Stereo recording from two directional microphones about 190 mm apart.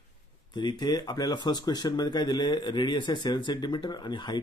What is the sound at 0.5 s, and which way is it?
Speech, 25° left (ahead or behind).